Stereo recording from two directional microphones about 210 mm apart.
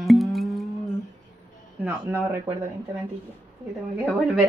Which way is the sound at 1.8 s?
10° right (ahead or behind).